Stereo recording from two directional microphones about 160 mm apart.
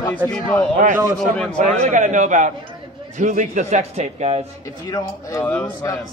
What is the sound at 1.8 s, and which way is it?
A man's voice, 50° right (ahead or behind).